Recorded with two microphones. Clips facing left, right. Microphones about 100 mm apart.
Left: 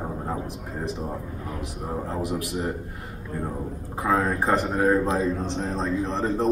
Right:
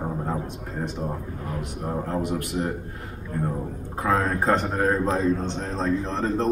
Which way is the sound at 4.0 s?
5° left (ahead or behind).